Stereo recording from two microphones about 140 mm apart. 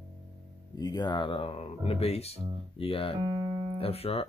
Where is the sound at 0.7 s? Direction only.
30° left (ahead or behind); by 4.3 s 45° left (ahead or behind).